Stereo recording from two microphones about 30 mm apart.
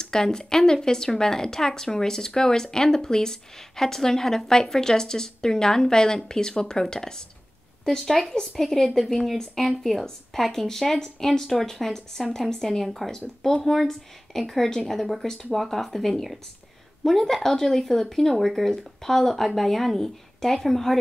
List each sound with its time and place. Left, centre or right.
0.0 s a woman's voice: left
8.0 s a woman's voice: centre